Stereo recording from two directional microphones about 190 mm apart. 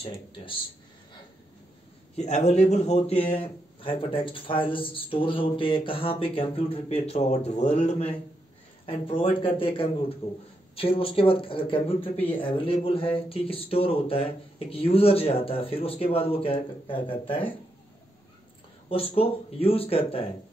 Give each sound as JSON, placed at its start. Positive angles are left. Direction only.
{"t": 0.0, "sound": "a man's voice", "side_deg": 25}
{"t": 2.1, "sound": "a man's voice", "side_deg": 35}
{"t": 18.9, "sound": "speech", "side_deg": 30}